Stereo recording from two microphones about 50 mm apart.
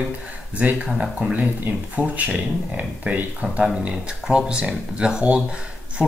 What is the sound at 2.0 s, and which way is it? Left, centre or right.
Speech, right.